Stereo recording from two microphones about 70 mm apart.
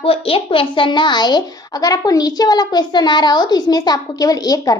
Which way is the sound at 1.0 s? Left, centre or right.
Left.